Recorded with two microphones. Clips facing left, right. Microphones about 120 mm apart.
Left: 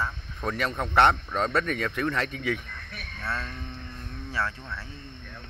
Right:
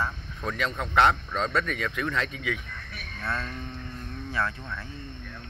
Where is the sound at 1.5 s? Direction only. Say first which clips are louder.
Left 1 dB; 40° left (ahead or behind).